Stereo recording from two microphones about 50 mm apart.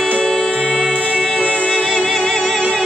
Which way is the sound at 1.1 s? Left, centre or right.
Right.